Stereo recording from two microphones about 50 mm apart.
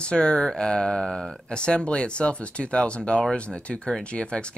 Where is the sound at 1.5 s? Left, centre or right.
Centre.